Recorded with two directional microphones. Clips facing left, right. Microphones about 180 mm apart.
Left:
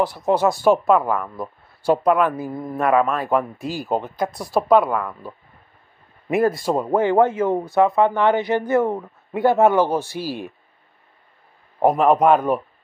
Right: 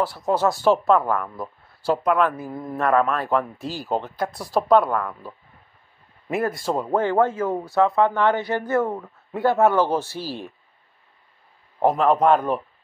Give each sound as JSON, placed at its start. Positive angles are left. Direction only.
{"t": 0.0, "sound": "speech", "side_deg": 15}
{"t": 6.3, "sound": "speech", "side_deg": 20}
{"t": 11.8, "sound": "speech", "side_deg": 15}